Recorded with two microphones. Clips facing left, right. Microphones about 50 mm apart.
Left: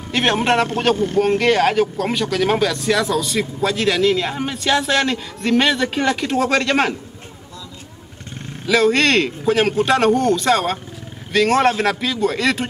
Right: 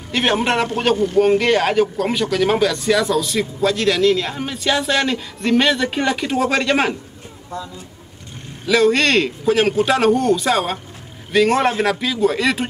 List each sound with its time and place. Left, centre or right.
0.1 s speech: centre
0.9 s speech: left
1.2 s speech: centre
8.6 s speech: centre